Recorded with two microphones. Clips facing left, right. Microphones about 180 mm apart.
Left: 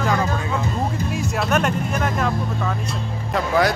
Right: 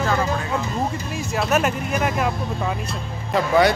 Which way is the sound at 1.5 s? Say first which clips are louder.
Right 1 dB; 5° right (ahead or behind).